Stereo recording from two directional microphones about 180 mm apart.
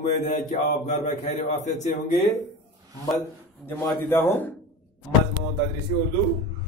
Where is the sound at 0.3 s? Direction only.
40° left (ahead or behind).